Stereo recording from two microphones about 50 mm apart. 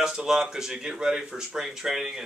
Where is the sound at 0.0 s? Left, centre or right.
Centre.